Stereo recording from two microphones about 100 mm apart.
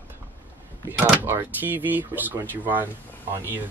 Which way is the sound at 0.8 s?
20° right (ahead or behind).